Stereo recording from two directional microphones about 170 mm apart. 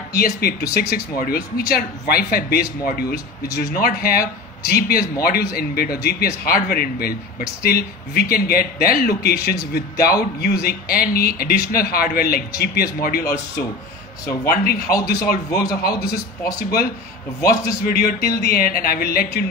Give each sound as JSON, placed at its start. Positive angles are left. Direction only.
{"t": 0.1, "sound": "speech", "side_deg": 65}
{"t": 13.2, "sound": "speech", "side_deg": 15}
{"t": 14.4, "sound": "speech", "side_deg": 65}